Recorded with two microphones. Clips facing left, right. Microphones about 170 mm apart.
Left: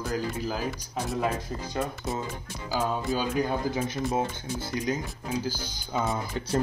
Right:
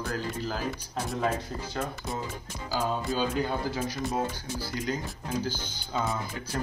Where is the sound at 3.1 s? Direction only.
15° left (ahead or behind).